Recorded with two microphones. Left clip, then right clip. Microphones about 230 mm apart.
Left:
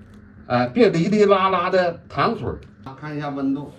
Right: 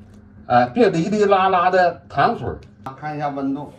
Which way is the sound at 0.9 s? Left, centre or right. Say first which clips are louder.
Even; left.